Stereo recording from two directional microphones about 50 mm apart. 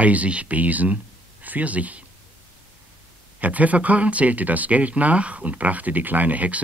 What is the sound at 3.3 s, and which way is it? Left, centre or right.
Speech, right.